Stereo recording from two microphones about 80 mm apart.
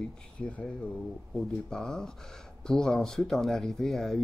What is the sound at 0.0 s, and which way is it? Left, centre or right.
Speech, centre.